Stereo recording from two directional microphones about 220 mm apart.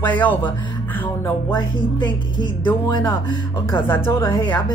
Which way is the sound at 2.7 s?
15° left (ahead or behind).